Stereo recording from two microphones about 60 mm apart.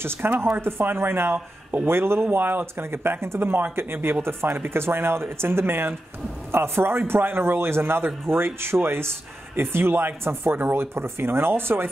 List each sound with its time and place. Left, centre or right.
0.0 s speech: right